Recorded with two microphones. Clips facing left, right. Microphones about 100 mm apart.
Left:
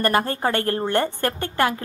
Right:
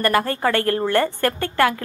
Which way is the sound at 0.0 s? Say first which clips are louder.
Right 2 dB; 25° left (ahead or behind).